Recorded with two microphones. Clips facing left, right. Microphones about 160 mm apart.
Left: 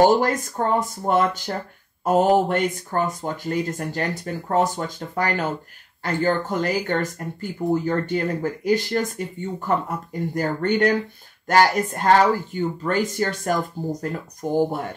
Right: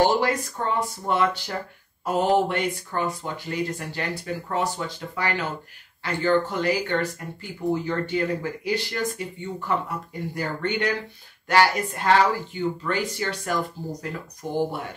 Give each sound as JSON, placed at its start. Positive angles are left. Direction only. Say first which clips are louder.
{"t": 0.0, "sound": "speech", "louder": "left 4 dB", "side_deg": 45}